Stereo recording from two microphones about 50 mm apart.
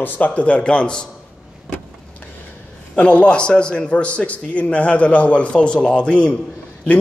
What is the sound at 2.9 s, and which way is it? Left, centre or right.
A man's voice, left.